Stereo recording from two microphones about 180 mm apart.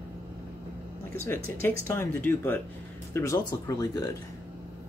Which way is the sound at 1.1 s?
10° left (ahead or behind).